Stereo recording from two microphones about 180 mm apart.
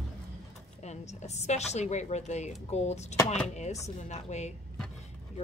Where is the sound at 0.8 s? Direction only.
40° left (ahead or behind).